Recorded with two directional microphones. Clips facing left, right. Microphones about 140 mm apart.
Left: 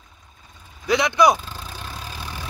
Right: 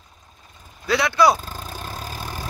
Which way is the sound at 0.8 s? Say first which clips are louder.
Left 1 dB; 20° left (ahead or behind).